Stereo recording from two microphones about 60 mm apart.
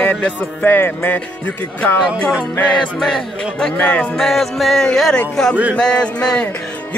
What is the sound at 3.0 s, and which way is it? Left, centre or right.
Speech, centre.